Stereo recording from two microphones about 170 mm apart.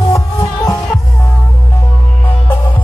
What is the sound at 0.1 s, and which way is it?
Music, 20° left (ahead or behind).